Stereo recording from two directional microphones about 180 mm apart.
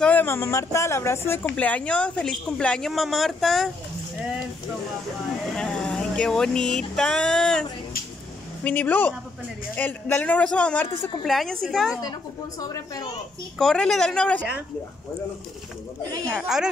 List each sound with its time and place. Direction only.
0.0 s speech: 10° left (ahead or behind)
5.6 s a sound: 5° left (ahead or behind)
8.6 s a woman's voice: 10° left (ahead or behind)
12.0 s speech: 20° left (ahead or behind)
13.6 s speech: centre (ahead or behind)
16.3 s speech: 5° right (ahead or behind)